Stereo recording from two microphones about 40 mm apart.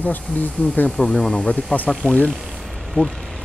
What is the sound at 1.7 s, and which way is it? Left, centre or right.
Speech, left.